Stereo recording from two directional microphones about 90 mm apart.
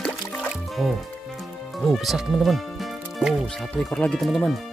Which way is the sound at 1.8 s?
Centre (ahead or behind).